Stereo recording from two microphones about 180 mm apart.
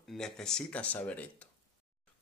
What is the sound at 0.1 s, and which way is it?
Speech, 5° left (ahead or behind).